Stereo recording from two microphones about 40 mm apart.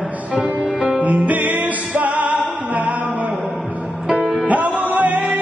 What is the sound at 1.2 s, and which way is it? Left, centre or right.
Music, right.